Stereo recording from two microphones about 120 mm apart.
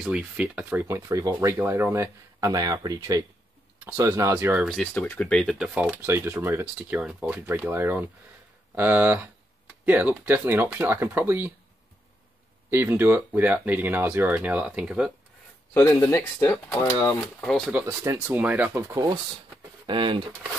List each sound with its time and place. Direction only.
0.0 s speech: 10° right (ahead or behind)
4.6 s speech: 5° left (ahead or behind)
5.8 s speech: 15° right (ahead or behind)
6.8 s speech: 5° right (ahead or behind)
12.6 s speech: 20° right (ahead or behind)
15.7 s speech: 15° left (ahead or behind)
17.4 s speech: 5° left (ahead or behind)
17.6 s speech: 10° right (ahead or behind)
19.9 s speech: 45° right (ahead or behind)